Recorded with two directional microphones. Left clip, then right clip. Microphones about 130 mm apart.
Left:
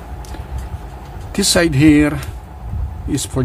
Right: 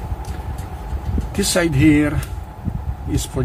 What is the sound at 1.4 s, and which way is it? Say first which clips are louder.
Speech: left 4 dB; 40° left (ahead or behind).